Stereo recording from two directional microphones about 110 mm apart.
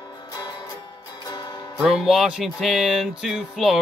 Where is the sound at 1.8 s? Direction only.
5° right (ahead or behind).